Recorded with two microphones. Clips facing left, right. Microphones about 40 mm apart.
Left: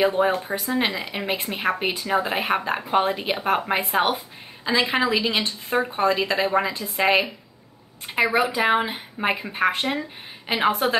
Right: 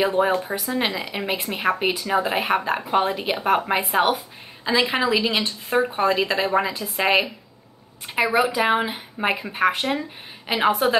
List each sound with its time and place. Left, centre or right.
0.0 s speech: centre